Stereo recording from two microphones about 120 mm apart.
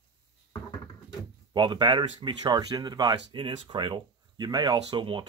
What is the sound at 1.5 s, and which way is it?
Speech, 40° right (ahead or behind).